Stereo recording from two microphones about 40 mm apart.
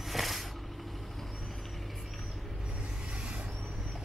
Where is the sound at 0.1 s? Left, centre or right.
Centre.